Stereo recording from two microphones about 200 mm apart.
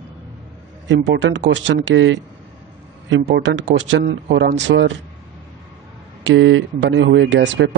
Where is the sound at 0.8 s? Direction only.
65° right (ahead or behind).